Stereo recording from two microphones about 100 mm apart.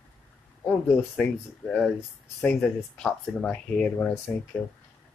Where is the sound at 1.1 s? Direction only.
10° left (ahead or behind).